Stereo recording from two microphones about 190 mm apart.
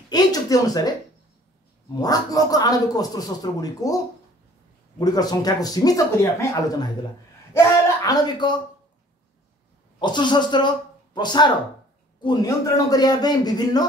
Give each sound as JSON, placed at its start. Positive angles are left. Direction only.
{"t": 0.1, "sound": "a sound", "side_deg": 20}
{"t": 2.0, "sound": "a man's voice", "side_deg": 20}
{"t": 7.5, "sound": "speech", "side_deg": 20}
{"t": 9.9, "sound": "a man's voice", "side_deg": 25}